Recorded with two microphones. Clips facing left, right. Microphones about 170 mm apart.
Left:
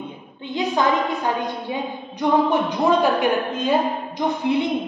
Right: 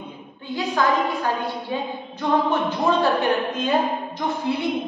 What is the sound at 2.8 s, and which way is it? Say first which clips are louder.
Speech: left 2 dB; 15° left (ahead or behind).